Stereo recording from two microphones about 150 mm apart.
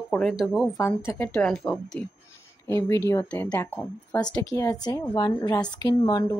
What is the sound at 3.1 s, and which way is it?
Speech, 15° left (ahead or behind).